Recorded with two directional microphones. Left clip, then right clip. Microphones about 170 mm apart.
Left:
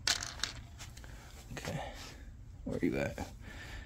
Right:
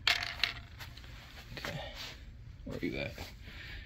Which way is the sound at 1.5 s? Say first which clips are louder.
Even; 45° left (ahead or behind).